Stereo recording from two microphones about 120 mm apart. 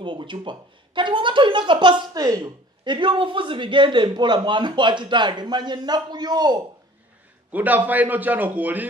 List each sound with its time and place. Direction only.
0.0 s speech: 40° right (ahead or behind)
7.5 s a man's voice: 15° right (ahead or behind)